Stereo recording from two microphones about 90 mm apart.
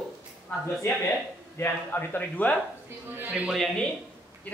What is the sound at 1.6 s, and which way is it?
Speech, 20° left (ahead or behind).